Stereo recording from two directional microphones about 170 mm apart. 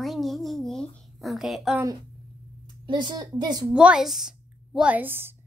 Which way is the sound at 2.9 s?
25° right (ahead or behind).